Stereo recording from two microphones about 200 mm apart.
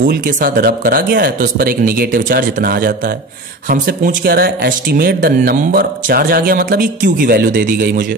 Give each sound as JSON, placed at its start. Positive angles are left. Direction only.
{"t": 0.0, "sound": "speech", "side_deg": -45}